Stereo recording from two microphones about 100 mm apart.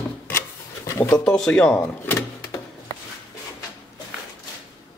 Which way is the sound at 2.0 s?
25° left (ahead or behind).